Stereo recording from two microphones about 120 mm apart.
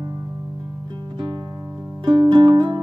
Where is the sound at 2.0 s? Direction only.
35° right (ahead or behind).